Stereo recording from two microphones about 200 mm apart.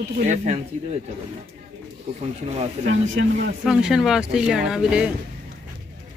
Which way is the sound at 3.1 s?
60° right (ahead or behind).